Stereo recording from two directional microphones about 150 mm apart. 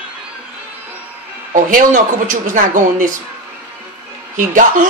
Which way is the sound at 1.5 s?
60° right (ahead or behind).